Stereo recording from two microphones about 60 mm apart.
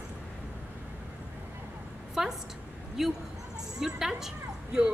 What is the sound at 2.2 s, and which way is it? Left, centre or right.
Speech, centre.